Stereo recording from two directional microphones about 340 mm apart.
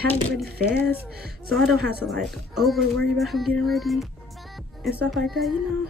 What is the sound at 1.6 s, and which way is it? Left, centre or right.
Speech, centre.